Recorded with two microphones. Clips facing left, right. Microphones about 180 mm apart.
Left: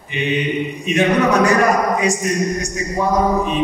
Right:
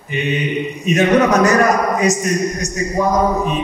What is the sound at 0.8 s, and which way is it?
Speech, 40° right (ahead or behind).